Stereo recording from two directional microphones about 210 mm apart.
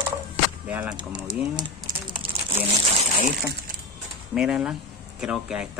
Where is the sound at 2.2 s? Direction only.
25° right (ahead or behind).